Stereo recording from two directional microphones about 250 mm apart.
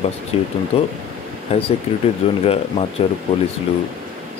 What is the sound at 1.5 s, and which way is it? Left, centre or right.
Speech, left.